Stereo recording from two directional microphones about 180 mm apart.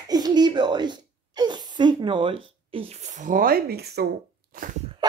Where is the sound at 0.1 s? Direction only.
25° right (ahead or behind).